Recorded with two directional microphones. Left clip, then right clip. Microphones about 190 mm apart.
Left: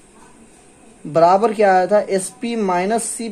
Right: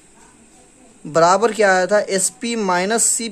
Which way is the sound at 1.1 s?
25° right (ahead or behind).